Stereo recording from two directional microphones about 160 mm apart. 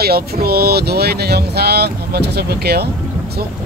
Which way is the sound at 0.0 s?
75° right (ahead or behind).